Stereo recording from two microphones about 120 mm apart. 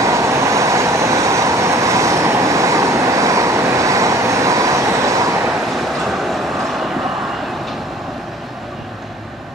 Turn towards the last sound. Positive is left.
turn(degrees=0)  # may be behind; listen again after turning